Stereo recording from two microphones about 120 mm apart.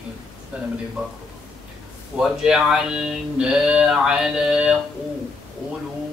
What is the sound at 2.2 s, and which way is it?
Speech, 5° right (ahead or behind).